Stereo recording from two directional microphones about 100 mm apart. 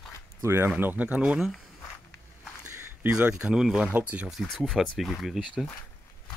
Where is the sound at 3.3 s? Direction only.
5° right (ahead or behind).